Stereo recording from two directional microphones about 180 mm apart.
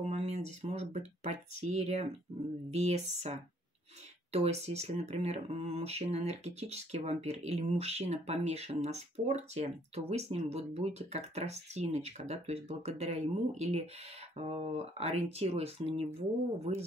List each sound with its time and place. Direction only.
0.0 s speech: 35° right (ahead or behind)
4.3 s speech: 35° right (ahead or behind)